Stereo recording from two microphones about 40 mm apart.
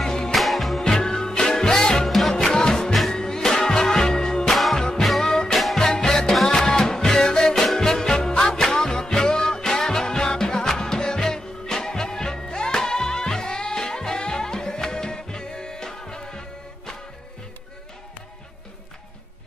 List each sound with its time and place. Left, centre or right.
0.0 s music: centre
0.3 s music: centre
0.9 s music: centre
4.5 s music: centre
4.7 s music: centre